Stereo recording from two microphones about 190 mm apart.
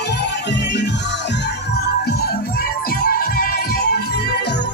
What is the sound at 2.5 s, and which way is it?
Music, 50° left (ahead or behind).